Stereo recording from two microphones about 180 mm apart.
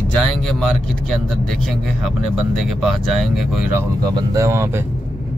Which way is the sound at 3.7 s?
20° right (ahead or behind).